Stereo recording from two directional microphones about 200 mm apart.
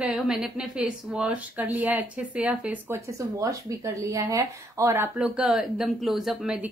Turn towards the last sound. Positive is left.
turn(degrees=-5)  # may be behind; listen again after turning